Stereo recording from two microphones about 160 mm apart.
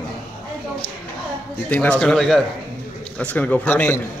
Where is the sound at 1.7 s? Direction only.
10° left (ahead or behind).